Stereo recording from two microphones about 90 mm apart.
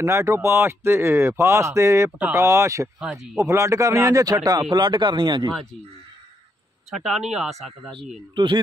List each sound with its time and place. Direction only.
0.0 s speech: 30° right (ahead or behind)
3.0 s speech: 5° right (ahead or behind)
3.3 s speech: 35° right (ahead or behind); by 5.5 s 55° right (ahead or behind)
6.9 s speech: centre (ahead or behind)